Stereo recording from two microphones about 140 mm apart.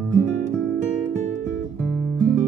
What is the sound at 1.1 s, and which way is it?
Music, 50° right (ahead or behind).